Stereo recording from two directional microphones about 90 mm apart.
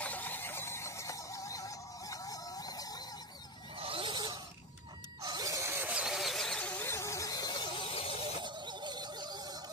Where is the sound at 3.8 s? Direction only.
85° right; by 4.3 s 60° right (ahead or behind).